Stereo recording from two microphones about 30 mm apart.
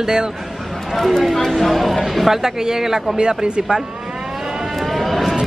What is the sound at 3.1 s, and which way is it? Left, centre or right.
Speech, right.